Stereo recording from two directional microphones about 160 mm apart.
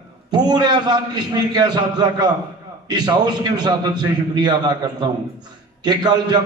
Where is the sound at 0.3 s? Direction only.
25° right (ahead or behind).